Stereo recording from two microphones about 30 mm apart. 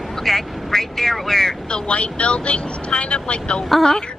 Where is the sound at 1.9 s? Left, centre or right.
Left.